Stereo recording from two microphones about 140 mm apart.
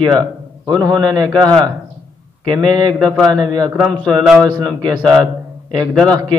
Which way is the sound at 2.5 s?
30° right (ahead or behind).